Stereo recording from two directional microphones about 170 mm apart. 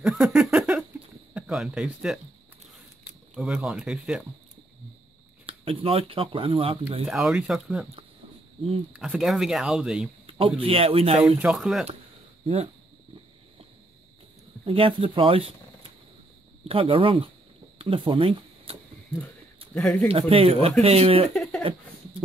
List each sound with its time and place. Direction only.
0.0 s a sound: 5° right (ahead or behind)
3.3 s speech: centre (ahead or behind)
5.5 s speech: 35° right (ahead or behind)
7.1 s speech: centre (ahead or behind)
8.9 s speech: 5° right (ahead or behind)
10.3 s speech: 30° right (ahead or behind)
11.1 s speech: 5° right (ahead or behind)
14.6 s speech: 30° right (ahead or behind)
19.6 s a sound: 35° right (ahead or behind)
20.1 s speech: 35° right (ahead or behind)
21.3 s a sound: 5° left (ahead or behind)